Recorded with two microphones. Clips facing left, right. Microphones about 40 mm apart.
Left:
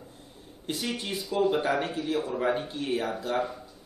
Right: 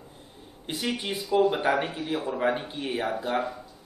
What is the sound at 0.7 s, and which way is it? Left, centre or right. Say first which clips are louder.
Speech: right 2 dB; centre.